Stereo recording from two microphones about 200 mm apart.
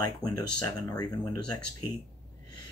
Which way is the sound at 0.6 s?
20° left (ahead or behind).